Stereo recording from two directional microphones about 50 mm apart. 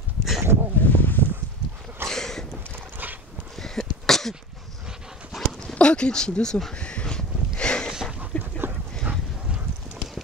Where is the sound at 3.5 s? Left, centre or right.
Centre.